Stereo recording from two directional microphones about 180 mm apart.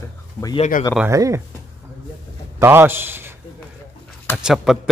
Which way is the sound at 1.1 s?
15° right (ahead or behind).